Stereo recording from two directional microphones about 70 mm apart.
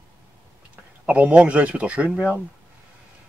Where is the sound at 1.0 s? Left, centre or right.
Right.